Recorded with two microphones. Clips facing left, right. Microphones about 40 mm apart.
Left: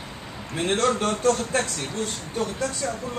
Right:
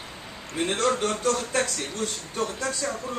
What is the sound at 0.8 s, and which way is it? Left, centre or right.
Speech, left.